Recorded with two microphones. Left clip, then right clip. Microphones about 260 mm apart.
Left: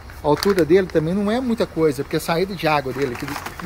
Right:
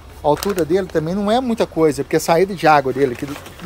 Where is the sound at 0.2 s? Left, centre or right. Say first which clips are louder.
Even; centre.